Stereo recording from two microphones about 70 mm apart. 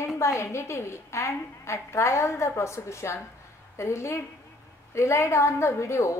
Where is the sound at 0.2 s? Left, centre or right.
Left.